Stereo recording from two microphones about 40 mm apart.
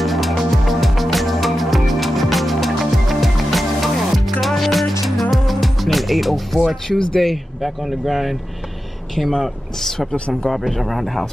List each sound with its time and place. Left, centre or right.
0.0 s music: centre
7.2 s speech: centre
9.3 s speech: centre
10.1 s speech: left
10.7 s speech: centre